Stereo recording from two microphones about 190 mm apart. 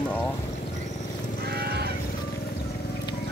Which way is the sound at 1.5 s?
55° right (ahead or behind).